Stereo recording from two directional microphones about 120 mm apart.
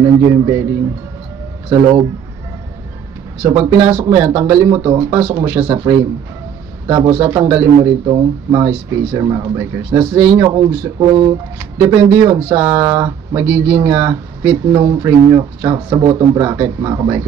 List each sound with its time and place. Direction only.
0.0 s speech: 30° right (ahead or behind)
1.7 s speech: 35° right (ahead or behind)
3.4 s speech: 30° right (ahead or behind)